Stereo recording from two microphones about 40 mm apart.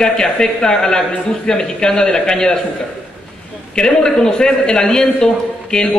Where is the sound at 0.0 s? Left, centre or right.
Centre.